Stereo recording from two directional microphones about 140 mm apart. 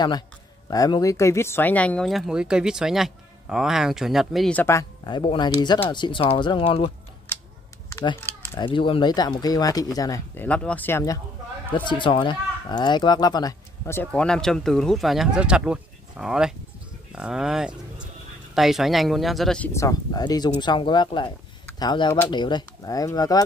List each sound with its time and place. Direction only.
0.7 s speech: 25° left (ahead or behind); by 4.6 s centre (ahead or behind)
4.6 s speech: 20° left (ahead or behind)
5.0 s speech: 35° left (ahead or behind)
7.3 s a sound: 15° left (ahead or behind)
8.5 s speech: 35° left (ahead or behind); by 11.1 s 15° left (ahead or behind)
11.7 s speech: 35° left (ahead or behind); by 19.7 s 5° left (ahead or behind)
19.7 s speech: 25° left (ahead or behind)